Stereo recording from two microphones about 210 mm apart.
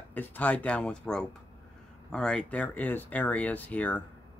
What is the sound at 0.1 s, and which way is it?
Speech, 10° left (ahead or behind).